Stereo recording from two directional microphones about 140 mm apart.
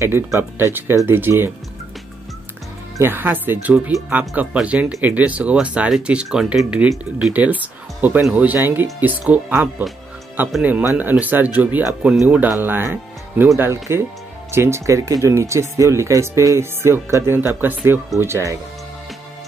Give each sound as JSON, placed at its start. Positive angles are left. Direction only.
{"t": 0.0, "sound": "speech", "side_deg": -15}
{"t": 3.0, "sound": "speech", "side_deg": -15}